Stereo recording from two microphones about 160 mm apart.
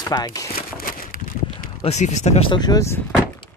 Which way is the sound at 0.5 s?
60° left (ahead or behind).